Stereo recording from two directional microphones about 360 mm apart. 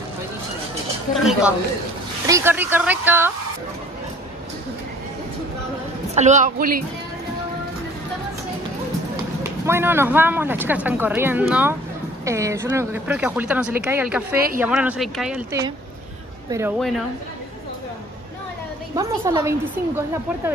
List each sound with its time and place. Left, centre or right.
1.1 s speech: centre
6.1 s a man's voice: centre
9.4 s speech: centre
18.9 s a woman's voice: centre